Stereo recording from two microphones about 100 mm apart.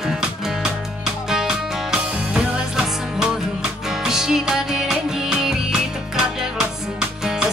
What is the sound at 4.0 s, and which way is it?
Music, 5° right (ahead or behind).